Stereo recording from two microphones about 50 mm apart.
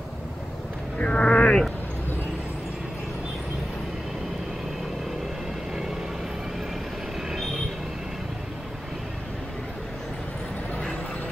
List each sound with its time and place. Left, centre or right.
0.9 s speech: left